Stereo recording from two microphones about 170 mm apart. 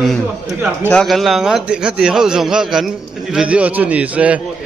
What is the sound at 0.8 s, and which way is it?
A man's voice, 5° left (ahead or behind).